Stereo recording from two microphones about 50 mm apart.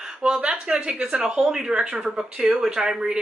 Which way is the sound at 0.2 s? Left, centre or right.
Right.